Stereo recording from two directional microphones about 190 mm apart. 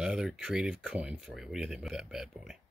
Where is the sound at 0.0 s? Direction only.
Centre (ahead or behind).